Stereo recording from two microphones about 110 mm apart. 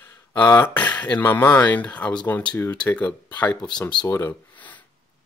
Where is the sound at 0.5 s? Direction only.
15° left (ahead or behind).